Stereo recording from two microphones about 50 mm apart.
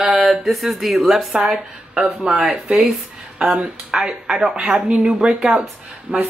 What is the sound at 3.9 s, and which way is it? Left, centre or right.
Speech, centre.